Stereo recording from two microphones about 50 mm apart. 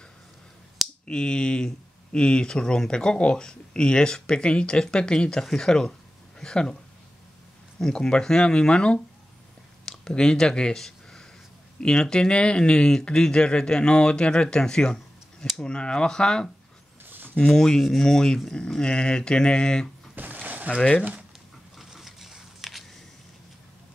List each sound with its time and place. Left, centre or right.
1.0 s speech: centre
7.8 s speech: centre
9.8 s a sound: centre
11.8 s speech: centre
17.0 s a sound: right
17.4 s speech: centre
20.2 s a sound: right
21.0 s speech: right
21.7 s biting: centre